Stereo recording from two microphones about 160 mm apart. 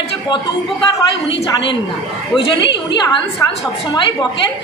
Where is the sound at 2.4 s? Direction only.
35° left (ahead or behind).